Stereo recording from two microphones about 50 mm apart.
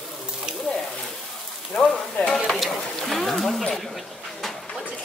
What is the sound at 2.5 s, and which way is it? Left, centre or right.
Speech, centre.